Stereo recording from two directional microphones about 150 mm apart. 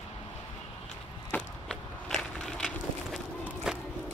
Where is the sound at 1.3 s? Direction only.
5° left (ahead or behind).